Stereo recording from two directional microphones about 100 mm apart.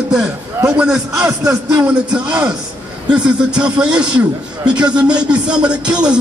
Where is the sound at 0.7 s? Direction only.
10° right (ahead or behind).